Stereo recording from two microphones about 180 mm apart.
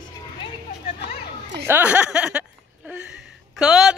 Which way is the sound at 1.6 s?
10° right (ahead or behind).